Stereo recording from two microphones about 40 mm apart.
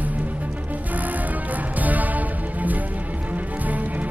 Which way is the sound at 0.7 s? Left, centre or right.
Right.